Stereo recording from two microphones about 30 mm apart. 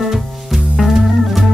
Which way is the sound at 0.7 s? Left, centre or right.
Centre.